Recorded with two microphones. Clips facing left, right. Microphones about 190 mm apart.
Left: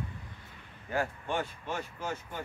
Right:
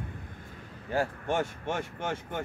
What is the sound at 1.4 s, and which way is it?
Speech, 80° right.